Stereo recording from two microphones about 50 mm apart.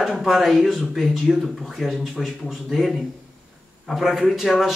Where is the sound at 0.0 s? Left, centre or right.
Centre.